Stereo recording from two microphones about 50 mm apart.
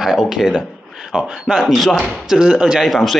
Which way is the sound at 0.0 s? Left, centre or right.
Centre.